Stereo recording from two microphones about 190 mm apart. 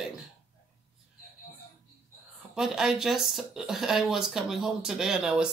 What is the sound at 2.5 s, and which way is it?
Speech, 5° right (ahead or behind).